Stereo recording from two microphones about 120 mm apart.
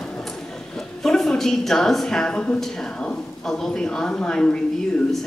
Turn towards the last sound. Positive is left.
turn(degrees=5)  # may be behind; listen again after turning